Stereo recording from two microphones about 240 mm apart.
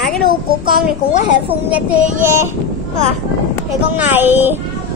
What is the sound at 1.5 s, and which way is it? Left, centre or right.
Speech, centre.